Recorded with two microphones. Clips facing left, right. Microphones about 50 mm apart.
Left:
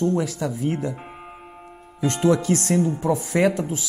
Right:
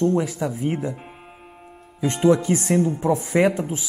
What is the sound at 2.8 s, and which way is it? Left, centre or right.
Speech, right.